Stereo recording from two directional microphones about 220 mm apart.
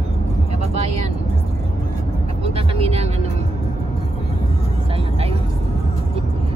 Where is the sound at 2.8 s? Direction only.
30° right (ahead or behind).